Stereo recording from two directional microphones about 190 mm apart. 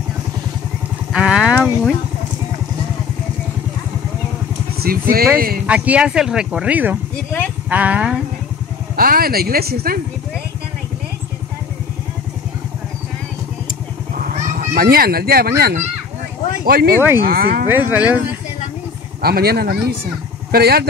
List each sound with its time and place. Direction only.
1.1 s speech: 5° right (ahead or behind)
4.7 s speech: 50° right (ahead or behind)
5.7 s speech: 5° right (ahead or behind)
8.9 s speech: 50° right (ahead or behind)
14.2 s speech: 50° right (ahead or behind)
17.6 s speech: 10° right (ahead or behind)
19.2 s speech: 55° right (ahead or behind)